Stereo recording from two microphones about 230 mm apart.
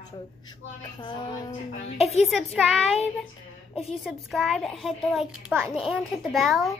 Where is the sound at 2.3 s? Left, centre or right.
Centre.